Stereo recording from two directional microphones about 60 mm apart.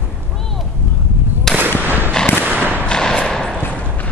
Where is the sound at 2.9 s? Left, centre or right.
Centre.